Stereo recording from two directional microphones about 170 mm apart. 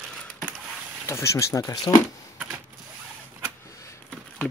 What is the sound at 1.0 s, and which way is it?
Speech, 15° left (ahead or behind).